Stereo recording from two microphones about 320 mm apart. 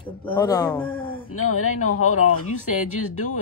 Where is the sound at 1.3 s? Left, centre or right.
Left.